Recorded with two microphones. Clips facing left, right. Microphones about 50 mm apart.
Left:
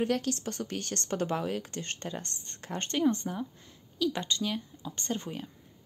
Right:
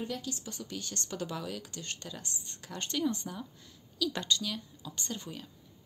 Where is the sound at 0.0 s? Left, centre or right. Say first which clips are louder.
Left 8 dB; left.